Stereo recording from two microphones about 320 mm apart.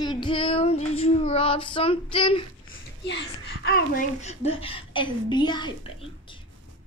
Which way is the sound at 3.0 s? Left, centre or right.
Left.